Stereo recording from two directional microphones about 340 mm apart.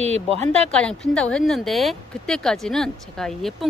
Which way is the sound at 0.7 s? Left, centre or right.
Centre.